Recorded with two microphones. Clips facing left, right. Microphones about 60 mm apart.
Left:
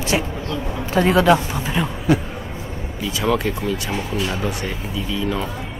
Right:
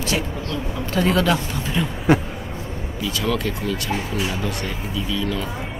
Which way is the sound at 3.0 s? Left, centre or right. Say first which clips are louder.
Left 3 dB; centre.